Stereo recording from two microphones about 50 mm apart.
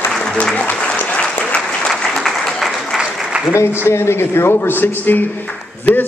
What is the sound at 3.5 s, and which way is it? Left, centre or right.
A man's voice, left.